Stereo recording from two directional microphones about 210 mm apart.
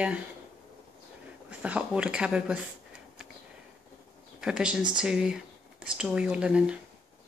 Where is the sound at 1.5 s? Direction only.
5° right (ahead or behind).